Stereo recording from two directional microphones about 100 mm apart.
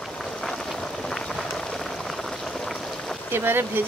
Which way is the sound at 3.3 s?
20° right (ahead or behind).